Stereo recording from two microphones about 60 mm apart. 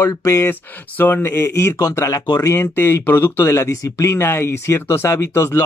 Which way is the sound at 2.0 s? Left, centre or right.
Left.